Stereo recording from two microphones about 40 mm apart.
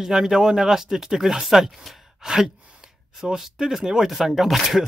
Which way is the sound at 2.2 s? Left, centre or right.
Centre.